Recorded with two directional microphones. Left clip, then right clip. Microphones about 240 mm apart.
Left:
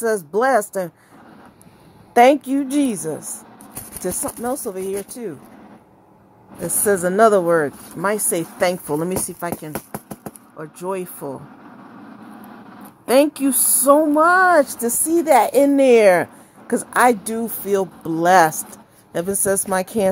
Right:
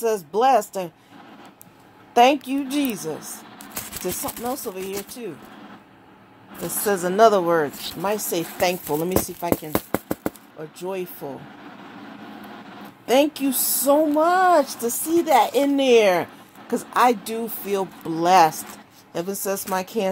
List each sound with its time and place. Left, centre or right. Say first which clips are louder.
0.0 s a woman's voice: left 1 dB; left
2.1 s a woman's voice: left 4 dB; left
6.8 s a woman's voice: left 2 dB; left
10.8 s a woman's voice: left 4 dB; left
13.0 s a woman's voice: left 3 dB; left